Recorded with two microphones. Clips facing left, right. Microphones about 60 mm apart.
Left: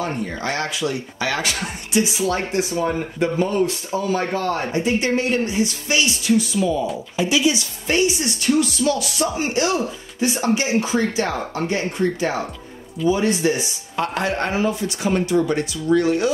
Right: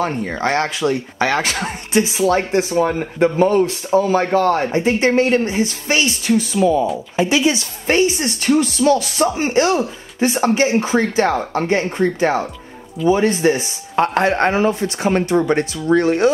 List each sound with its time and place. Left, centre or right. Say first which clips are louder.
0.0 s speech: right 5 dB; right
4.3 s speech: right 7 dB; right
4.7 s speech: right 5 dB; right